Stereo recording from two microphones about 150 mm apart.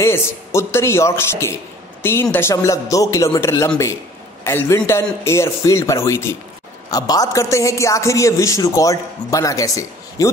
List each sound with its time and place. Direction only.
0.0 s a man's voice: 15° left (ahead or behind)